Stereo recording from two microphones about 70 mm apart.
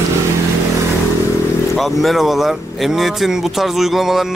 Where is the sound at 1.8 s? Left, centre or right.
Centre.